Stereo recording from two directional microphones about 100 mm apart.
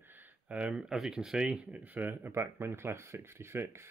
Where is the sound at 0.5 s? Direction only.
10° right (ahead or behind).